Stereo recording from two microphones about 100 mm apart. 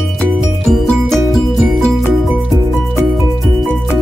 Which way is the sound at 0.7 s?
Centre (ahead or behind).